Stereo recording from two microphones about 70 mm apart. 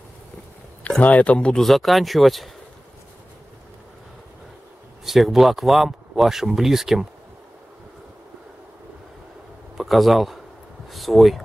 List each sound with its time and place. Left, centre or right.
0.8 s speech: centre
1.6 s speech: centre
5.0 s speech: centre
9.8 s speech: centre